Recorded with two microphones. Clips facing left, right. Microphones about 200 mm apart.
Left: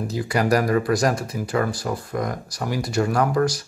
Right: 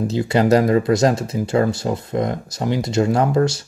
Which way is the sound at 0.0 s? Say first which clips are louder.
Right 5 dB; 25° right (ahead or behind).